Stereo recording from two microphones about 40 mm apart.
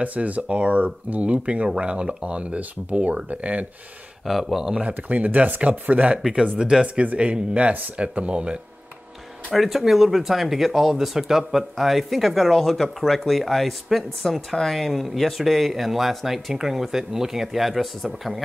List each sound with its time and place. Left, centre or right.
0.0 s speech: right
4.3 s speech: centre
4.8 s speech: right
6.1 s speech: centre
7.0 s speech: right
9.5 s speech: centre